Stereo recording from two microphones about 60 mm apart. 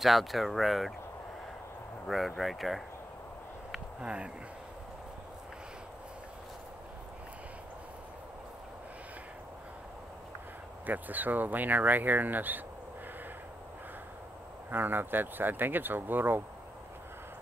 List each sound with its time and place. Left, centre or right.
0.0 s speech: centre
2.0 s speech: centre
4.0 s speech: centre
10.9 s speech: right
14.7 s speech: right